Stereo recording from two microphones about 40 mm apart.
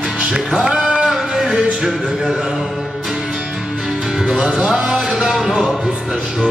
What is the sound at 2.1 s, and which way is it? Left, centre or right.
Speech, centre.